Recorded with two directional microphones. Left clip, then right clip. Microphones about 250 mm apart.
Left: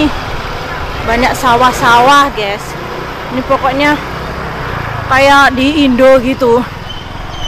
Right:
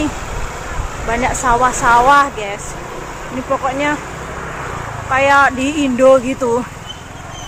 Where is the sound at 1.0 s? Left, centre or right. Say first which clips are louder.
Left 5 dB; centre.